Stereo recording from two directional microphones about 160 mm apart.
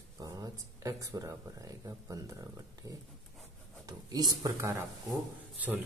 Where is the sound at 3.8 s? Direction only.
25° right (ahead or behind).